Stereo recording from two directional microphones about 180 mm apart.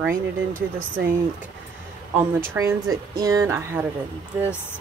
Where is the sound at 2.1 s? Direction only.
15° right (ahead or behind).